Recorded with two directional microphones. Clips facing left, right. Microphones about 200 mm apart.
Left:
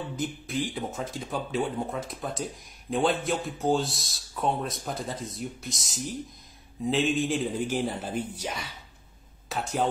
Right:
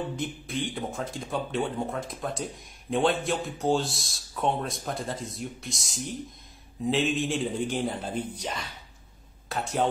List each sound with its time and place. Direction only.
0.1 s speech: centre (ahead or behind)